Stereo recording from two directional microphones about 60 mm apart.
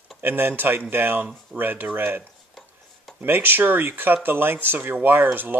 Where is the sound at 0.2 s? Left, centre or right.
Right.